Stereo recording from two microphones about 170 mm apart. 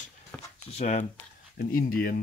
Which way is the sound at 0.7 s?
40° left (ahead or behind).